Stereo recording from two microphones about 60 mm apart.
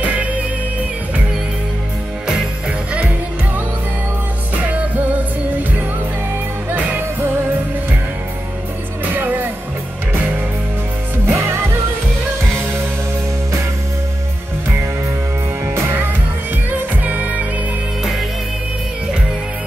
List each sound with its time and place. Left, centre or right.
0.0 s music: right
4.6 s music: right
6.7 s music: right
9.0 s music: right
11.2 s music: right
15.6 s music: right
16.7 s music: right